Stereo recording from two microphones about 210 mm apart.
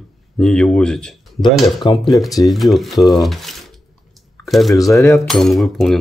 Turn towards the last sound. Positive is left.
turn(degrees=0)  # may be behind; listen again after turning